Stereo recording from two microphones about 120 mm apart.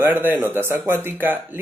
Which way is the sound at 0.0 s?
15° right (ahead or behind).